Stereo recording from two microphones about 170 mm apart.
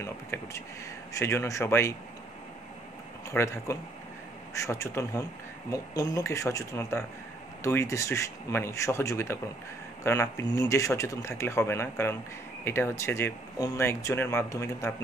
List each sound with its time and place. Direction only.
0.0 s speech: 15° left (ahead or behind)
3.3 s speech: 15° left (ahead or behind)